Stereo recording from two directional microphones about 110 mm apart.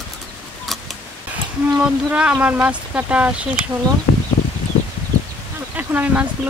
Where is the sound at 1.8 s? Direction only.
10° right (ahead or behind).